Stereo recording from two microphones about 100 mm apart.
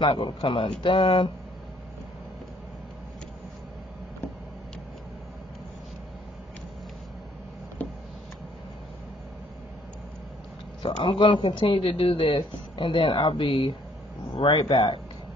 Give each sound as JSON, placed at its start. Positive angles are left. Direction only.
{"t": 0.0, "sound": "speech", "side_deg": 55}
{"t": 10.8, "sound": "speech", "side_deg": 55}